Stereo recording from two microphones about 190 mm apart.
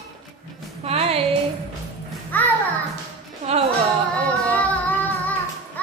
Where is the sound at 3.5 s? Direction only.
35° right (ahead or behind).